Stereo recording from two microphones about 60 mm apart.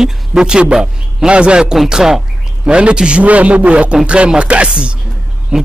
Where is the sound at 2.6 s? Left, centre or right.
Centre.